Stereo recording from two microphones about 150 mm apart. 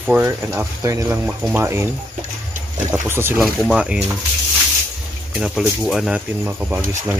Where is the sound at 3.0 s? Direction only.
15° right (ahead or behind).